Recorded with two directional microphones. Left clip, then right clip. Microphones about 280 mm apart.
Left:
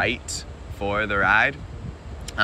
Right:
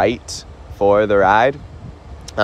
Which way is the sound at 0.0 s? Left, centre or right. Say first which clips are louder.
Right 7 dB; centre.